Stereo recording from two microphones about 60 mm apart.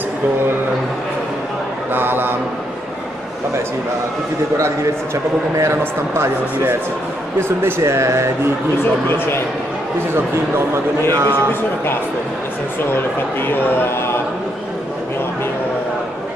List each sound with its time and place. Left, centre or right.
2.0 s speech: right
5.6 s a man's voice: right
7.3 s a man's voice: right
9.1 s a man's voice: left
10.1 s a man's voice: right
13.5 s a man's voice: left